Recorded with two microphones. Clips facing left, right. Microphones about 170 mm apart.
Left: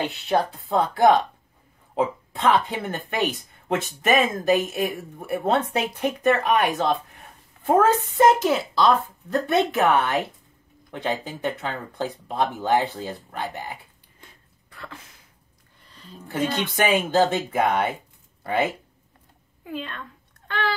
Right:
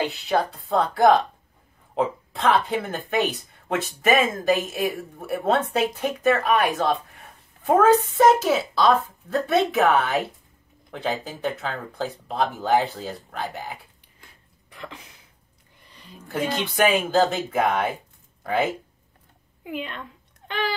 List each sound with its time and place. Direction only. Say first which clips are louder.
0.0 s speech: even; centre (ahead or behind)
14.7 s a sound: right 2 dB; 20° right (ahead or behind)
16.3 s speech: left 1 dB; centre (ahead or behind)
19.6 s a woman's voice: right 1 dB; 15° right (ahead or behind)